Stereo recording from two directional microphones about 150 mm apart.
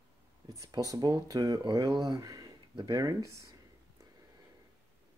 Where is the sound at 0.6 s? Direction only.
25° right (ahead or behind).